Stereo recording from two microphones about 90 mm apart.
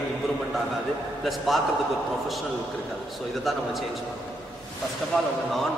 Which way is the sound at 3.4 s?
Centre (ahead or behind).